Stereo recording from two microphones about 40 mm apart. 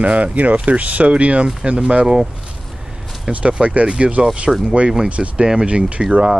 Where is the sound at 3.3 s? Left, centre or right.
Right.